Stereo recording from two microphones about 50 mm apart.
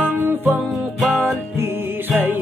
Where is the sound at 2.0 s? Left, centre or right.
Right.